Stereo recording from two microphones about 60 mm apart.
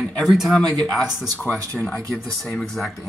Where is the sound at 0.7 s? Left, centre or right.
Centre.